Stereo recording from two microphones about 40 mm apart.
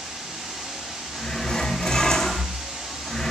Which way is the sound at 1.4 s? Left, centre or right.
Centre.